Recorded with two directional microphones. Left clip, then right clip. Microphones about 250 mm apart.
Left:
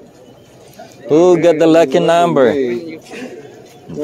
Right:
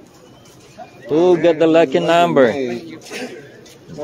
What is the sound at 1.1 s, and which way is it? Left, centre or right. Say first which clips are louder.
Speech: left 4 dB; left.